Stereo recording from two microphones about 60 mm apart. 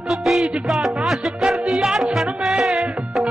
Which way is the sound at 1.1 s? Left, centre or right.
Centre.